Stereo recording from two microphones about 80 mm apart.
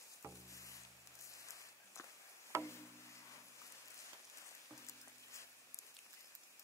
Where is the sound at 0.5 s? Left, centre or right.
Left.